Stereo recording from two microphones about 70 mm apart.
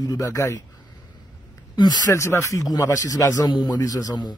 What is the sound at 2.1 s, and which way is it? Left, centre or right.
Speech, left.